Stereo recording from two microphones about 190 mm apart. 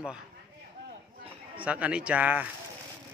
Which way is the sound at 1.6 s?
5° right (ahead or behind).